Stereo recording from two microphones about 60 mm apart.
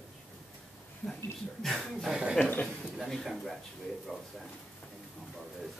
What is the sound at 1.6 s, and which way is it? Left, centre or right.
Speech, centre.